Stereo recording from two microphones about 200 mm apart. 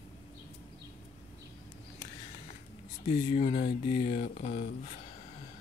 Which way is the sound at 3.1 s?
30° left (ahead or behind).